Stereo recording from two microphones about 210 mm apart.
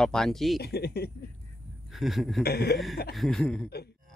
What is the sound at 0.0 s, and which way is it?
Speech, centre (ahead or behind).